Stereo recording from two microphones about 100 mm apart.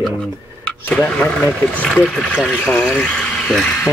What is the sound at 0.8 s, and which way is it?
Speech, 15° left (ahead or behind).